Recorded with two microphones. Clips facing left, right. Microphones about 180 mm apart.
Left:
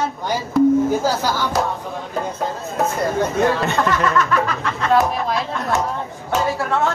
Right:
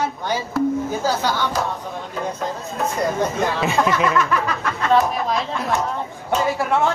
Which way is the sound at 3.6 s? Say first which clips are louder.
Even; 5° right (ahead or behind).